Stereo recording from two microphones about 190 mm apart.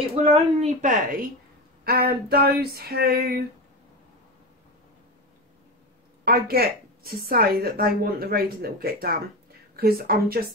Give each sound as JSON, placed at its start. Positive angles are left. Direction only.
{"t": 0.1, "sound": "a woman's voice", "side_deg": -35}
{"t": 1.9, "sound": "a sound", "side_deg": -55}
{"t": 6.2, "sound": "a woman's voice", "side_deg": -55}